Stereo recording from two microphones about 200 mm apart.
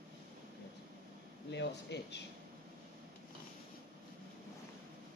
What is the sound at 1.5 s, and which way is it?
Speech, 60° left (ahead or behind).